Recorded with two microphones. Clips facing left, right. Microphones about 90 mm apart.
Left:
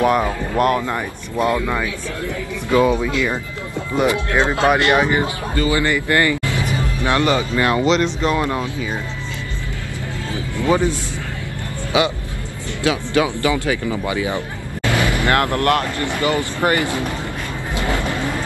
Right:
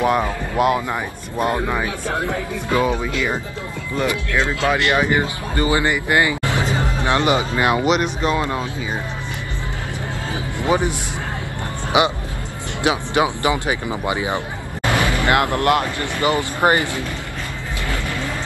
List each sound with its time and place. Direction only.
0.0 s speech: 5° right (ahead or behind)
1.4 s speech: 45° right (ahead or behind)
3.9 s speech: 20° left (ahead or behind)
5.0 s speech: 20° right (ahead or behind)
10.3 s a sound: 20° right (ahead or behind)
11.9 s speech: 20° right (ahead or behind)
15.0 s vehicle: 20° left (ahead or behind)
15.2 s speech: 20° right (ahead or behind)
16.8 s speech: 20° left (ahead or behind)
17.7 s vehicle: 20° left (ahead or behind)